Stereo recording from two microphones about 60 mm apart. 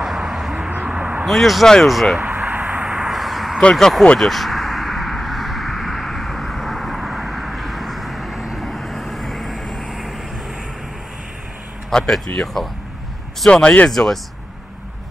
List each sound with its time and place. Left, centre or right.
0.0 s vehicle: centre
0.6 s vehicle: right
1.2 s speech: centre
2.1 s a sound: right
3.1 s a sound: centre
3.7 s speech: centre
4.2 s a sound: centre
8.4 s vehicle: centre
12.3 s speech: left
13.5 s speech: centre
13.8 s speech: centre